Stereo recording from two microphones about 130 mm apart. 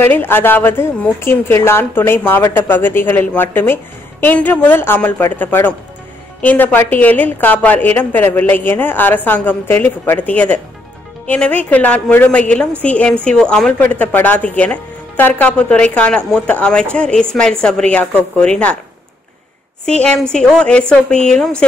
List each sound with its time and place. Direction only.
0.0 s a woman's voice: 15° left (ahead or behind)
20.0 s a woman's voice: 5° left (ahead or behind)